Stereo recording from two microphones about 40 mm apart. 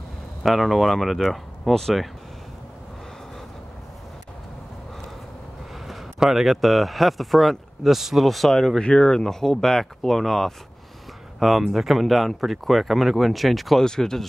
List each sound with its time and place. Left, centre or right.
0.4 s speech: centre
6.1 s speech: centre
6.4 s speech: centre
8.8 s speech: left
9.2 s speech: centre
13.8 s speech: centre